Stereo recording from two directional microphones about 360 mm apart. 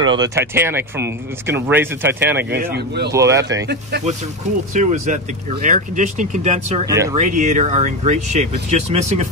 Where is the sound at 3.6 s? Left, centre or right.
Right; by 7.2 s centre.